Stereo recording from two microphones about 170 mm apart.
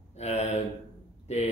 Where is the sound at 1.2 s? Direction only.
40° left (ahead or behind).